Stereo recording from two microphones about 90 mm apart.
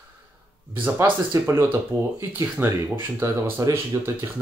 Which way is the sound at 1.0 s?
30° right (ahead or behind).